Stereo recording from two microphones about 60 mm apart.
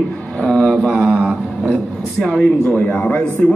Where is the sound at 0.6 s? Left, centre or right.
Centre.